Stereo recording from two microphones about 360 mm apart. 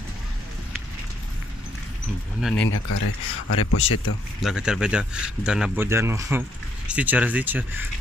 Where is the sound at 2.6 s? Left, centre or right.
Left.